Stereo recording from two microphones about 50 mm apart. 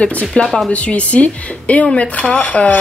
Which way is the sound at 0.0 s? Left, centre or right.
Left.